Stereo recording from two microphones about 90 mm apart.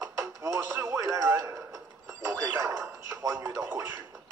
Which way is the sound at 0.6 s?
20° right (ahead or behind).